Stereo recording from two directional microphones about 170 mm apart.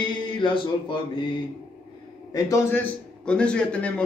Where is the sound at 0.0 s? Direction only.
30° left (ahead or behind).